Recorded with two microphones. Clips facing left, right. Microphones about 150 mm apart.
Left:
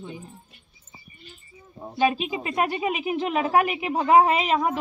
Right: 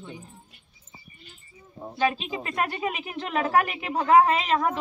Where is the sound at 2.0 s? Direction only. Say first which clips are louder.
Left 3 dB; 15° left (ahead or behind).